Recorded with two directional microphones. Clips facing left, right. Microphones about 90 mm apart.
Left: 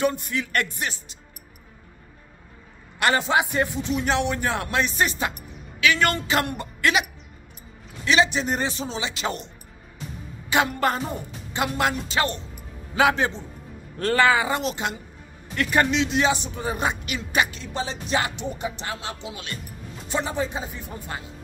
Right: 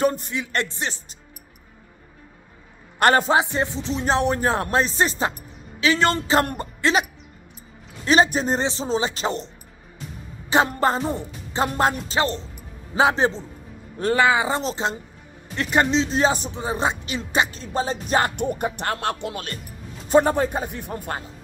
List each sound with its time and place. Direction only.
0.0 s speech: 40° right (ahead or behind)
0.3 s speech: 25° right (ahead or behind)
3.0 s speech: 45° right (ahead or behind)
3.3 s speech: 25° right (ahead or behind); by 8.5 s 40° right (ahead or behind)
8.5 s speech: 25° right (ahead or behind)
8.8 s speech: 40° right (ahead or behind)
10.5 s speech: 35° right (ahead or behind)
13.9 s speech: 20° right (ahead or behind); by 16.5 s 35° right (ahead or behind)
16.5 s speech: 25° right (ahead or behind); by 21.2 s 55° right (ahead or behind)